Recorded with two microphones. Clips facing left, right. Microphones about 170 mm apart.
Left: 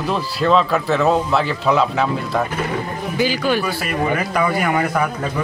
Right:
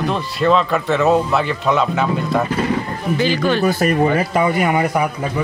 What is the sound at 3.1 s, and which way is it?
Speech, 10° left (ahead or behind).